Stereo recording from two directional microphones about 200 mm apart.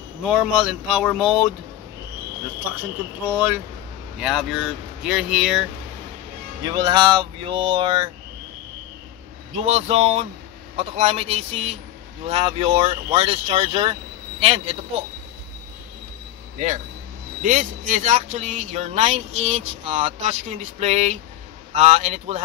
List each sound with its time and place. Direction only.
0.2 s speech: 5° right (ahead or behind)
3.3 s speech: 10° right (ahead or behind)
6.6 s speech: 20° right (ahead or behind)
9.6 s speech: 30° right (ahead or behind)
16.5 s speech: 35° right (ahead or behind)